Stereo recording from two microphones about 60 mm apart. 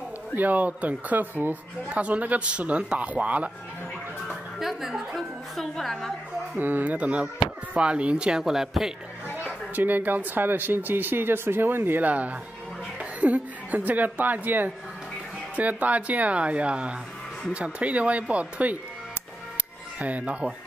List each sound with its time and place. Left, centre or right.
0.4 s speech: right
4.6 s a woman's voice: centre
6.5 s speech: right; by 8.9 s centre
9.4 s a woman's voice: right
20.0 s speech: right